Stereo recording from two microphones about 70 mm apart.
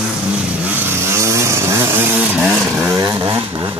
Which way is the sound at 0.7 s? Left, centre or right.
Right.